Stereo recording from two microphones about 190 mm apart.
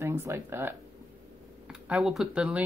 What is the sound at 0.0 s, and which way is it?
Speech, 15° right (ahead or behind).